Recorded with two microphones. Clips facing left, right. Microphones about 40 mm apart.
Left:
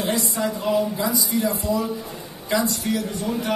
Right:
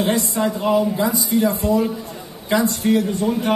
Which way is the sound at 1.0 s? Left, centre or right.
Right.